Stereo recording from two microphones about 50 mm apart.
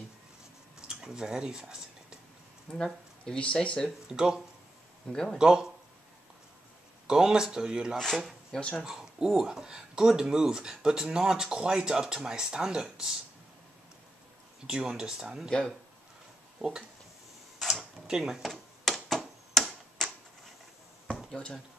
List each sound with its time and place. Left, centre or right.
0.7 s speech: centre
2.8 s speech: centre
4.1 s speech: centre
5.1 s speech: centre
5.4 s speech: centre
7.1 s speech: centre
8.5 s speech: centre
8.8 s speech: centre
14.7 s speech: centre
16.5 s a sound: centre
17.6 s drawer open or close: centre
19.0 s a sound: centre
21.3 s speech: centre